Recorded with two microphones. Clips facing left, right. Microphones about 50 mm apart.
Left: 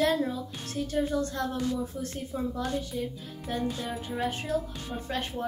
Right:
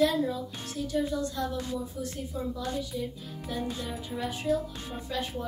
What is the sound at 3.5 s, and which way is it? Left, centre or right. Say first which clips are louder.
Music: left 2 dB; left.